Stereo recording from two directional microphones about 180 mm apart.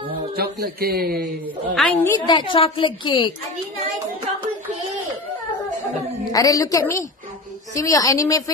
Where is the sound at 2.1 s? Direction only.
25° left (ahead or behind).